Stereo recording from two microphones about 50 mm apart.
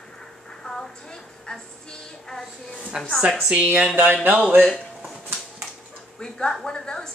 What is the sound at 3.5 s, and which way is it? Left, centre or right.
Speech, right.